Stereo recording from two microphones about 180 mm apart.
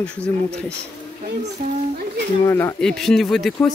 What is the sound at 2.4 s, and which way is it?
Speech, 15° left (ahead or behind).